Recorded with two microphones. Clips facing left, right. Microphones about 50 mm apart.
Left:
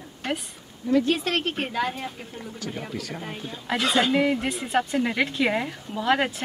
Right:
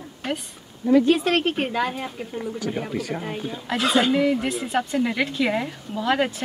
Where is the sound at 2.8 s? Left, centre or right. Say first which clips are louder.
Right 6 dB; right.